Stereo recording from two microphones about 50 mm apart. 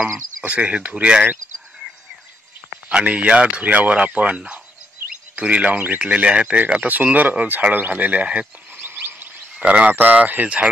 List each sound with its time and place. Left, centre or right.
0.4 s speech: right
2.9 s speech: centre
8.8 s a sound: right
9.6 s speech: right
9.9 s speech: right